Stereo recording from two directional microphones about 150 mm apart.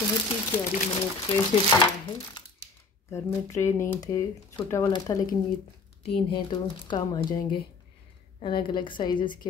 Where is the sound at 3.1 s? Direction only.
20° left (ahead or behind).